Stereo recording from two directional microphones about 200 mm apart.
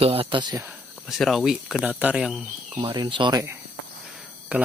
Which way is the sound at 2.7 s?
25° right (ahead or behind).